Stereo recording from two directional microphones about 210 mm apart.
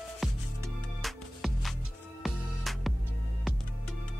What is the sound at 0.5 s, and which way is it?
Music, 15° right (ahead or behind).